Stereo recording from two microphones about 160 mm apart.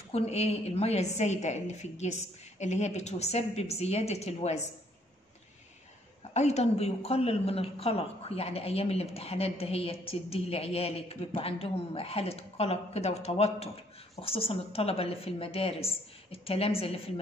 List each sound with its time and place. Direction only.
0.1 s a woman's voice: 40° left (ahead or behind)
6.3 s a woman's voice: 45° left (ahead or behind)